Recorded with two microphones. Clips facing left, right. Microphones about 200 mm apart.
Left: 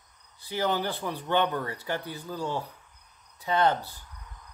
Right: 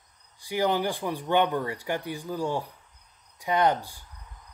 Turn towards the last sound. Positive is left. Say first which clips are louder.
# right 1 dB
turn(degrees=-15)  # may be behind; listen again after turning